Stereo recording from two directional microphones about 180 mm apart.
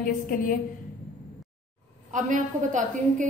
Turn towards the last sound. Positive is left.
turn(degrees=-45)  # may be behind; listen again after turning